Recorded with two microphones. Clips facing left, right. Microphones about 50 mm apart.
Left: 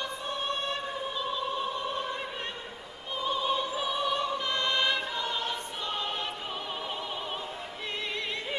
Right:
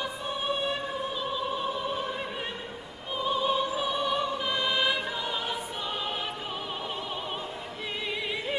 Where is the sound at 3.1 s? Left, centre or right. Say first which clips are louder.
Right 2 dB; centre.